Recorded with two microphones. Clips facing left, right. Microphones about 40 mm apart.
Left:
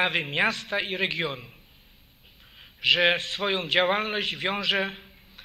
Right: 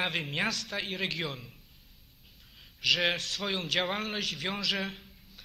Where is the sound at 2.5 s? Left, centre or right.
Left.